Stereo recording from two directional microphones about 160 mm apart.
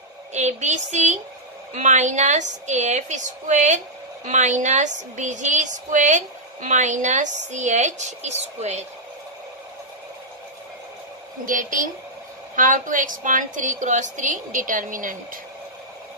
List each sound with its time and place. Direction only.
0.3 s a woman's voice: 45° right (ahead or behind)
11.4 s a woman's voice: 60° right (ahead or behind)